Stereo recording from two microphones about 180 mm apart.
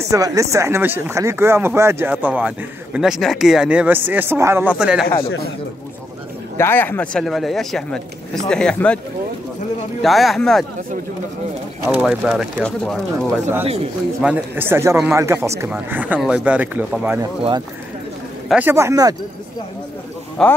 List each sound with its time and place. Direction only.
0.1 s speech: 20° right (ahead or behind)
6.5 s speech: 10° left (ahead or behind)
10.0 s speech: centre (ahead or behind)
11.9 s speech: 5° right (ahead or behind)
14.2 s speech: 10° right (ahead or behind)
17.4 s speech: 25° right (ahead or behind)
18.5 s speech: 10° right (ahead or behind)
20.4 s speech: 5° left (ahead or behind)